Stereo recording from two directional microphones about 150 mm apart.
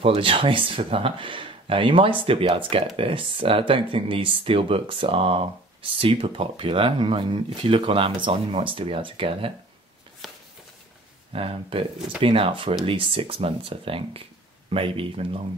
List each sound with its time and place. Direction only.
0.0 s speech: 40° right (ahead or behind)
10.2 s walk: centre (ahead or behind)
11.3 s speech: 40° right (ahead or behind)